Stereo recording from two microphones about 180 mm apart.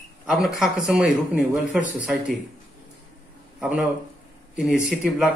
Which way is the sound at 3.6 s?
5° right (ahead or behind).